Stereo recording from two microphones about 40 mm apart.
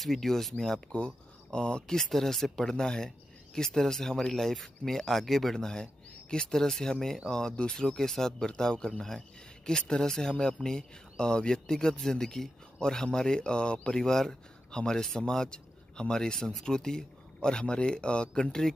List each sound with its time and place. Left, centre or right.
0.0 s speech: centre
0.9 s speech: left
2.0 s speech: centre
5.6 s speech: centre
16.3 s speech: centre